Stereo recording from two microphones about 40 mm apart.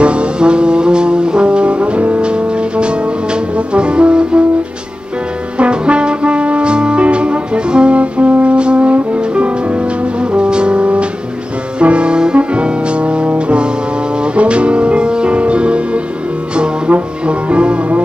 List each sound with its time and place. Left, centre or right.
0.0 s brass instrument: right
5.6 s brass instrument: right
12.4 s music: right